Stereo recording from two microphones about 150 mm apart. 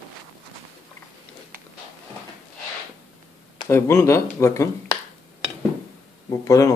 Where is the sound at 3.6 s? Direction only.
20° left (ahead or behind).